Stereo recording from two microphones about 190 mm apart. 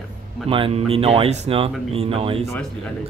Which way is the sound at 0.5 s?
30° right (ahead or behind).